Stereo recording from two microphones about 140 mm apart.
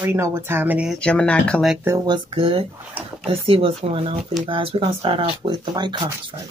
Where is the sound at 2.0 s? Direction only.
40° right (ahead or behind).